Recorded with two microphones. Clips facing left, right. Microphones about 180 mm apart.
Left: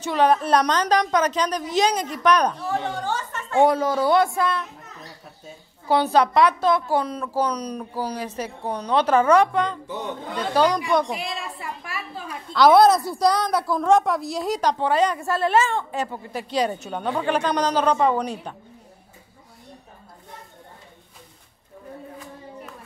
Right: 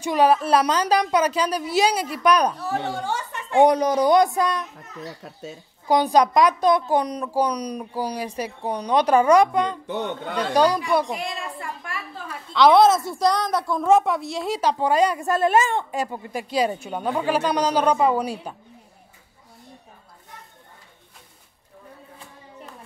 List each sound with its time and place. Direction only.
0.0 s a woman's voice: 10° right (ahead or behind)
5.2 s speech: 90° right
5.9 s a woman's voice: 15° right (ahead or behind)
9.8 s speech: 65° right (ahead or behind)
10.5 s a woman's voice: 10° right (ahead or behind)
11.1 s a woman's voice: 5° left (ahead or behind)